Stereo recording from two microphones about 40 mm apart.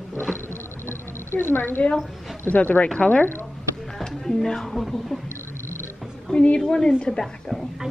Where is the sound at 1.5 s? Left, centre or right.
Left.